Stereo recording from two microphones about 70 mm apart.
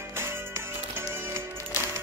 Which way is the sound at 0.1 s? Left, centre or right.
Right.